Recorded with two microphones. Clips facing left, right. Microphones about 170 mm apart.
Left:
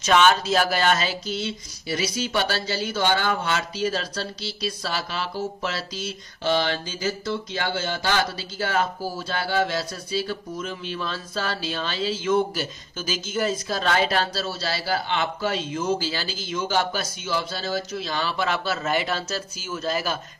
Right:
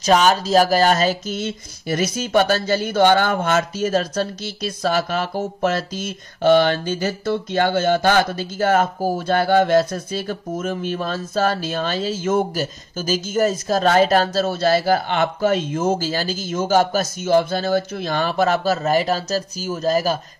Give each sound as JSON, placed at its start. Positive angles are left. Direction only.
{"t": 0.0, "sound": "speech", "side_deg": -40}